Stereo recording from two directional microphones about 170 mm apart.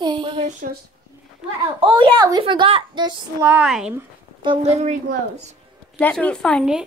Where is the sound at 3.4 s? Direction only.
15° right (ahead or behind).